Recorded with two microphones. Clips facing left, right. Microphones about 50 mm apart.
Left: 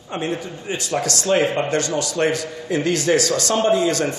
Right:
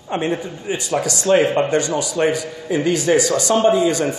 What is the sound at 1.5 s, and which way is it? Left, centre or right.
Speech, right.